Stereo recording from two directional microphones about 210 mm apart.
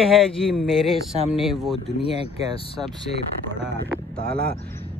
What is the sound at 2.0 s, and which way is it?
Speech, 25° left (ahead or behind).